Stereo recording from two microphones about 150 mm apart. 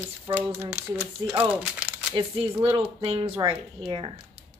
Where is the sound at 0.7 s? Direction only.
15° right (ahead or behind).